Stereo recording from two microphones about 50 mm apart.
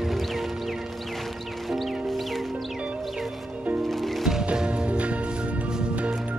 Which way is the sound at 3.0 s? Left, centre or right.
Centre.